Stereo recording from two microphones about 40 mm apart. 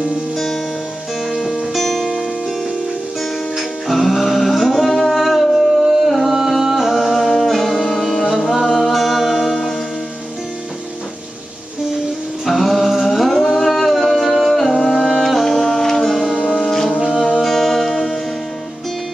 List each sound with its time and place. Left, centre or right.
1.8 s music: centre
3.2 s music: centre
12.4 s music: centre